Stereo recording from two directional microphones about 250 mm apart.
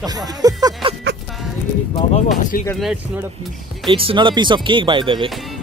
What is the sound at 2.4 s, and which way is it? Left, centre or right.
Speech, left.